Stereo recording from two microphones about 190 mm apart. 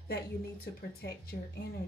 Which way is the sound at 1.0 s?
55° left (ahead or behind).